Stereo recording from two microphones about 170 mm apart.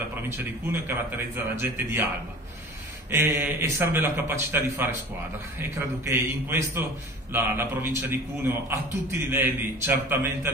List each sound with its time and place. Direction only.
0.4 s a man's voice: 10° right (ahead or behind)
3.1 s a man's voice: 15° right (ahead or behind)
6.0 s a man's voice: 15° right (ahead or behind)